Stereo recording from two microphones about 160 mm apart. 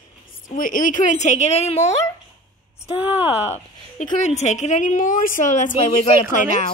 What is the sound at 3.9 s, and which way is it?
A woman's voice, 45° left (ahead or behind).